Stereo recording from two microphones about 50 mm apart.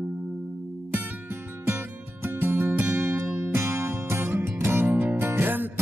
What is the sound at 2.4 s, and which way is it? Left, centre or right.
Music, right.